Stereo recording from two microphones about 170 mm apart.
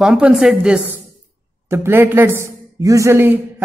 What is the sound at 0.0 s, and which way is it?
A woman's voice, 5° right (ahead or behind).